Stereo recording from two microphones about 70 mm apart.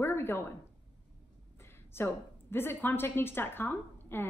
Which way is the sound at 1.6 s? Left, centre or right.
Left.